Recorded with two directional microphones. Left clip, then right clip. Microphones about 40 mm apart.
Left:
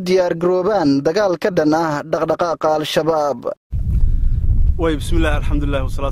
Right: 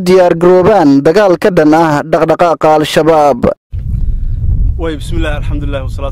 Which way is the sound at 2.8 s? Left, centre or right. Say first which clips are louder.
Right 9 dB; right.